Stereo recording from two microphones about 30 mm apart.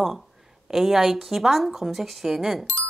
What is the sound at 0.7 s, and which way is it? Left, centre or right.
A woman's voice, centre.